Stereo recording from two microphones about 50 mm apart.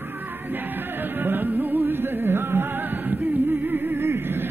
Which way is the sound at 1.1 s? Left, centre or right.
Right.